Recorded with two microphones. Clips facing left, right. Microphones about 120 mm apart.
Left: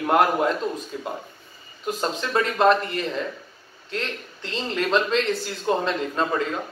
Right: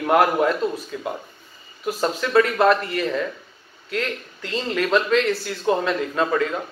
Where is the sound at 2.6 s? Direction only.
30° left (ahead or behind).